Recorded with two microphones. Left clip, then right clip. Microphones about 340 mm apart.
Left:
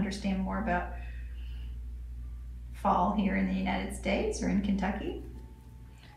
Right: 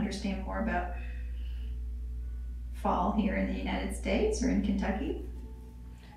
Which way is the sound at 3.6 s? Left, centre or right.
Centre.